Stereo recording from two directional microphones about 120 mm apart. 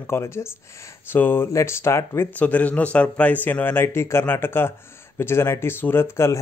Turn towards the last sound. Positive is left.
turn(degrees=20)  # may be behind; listen again after turning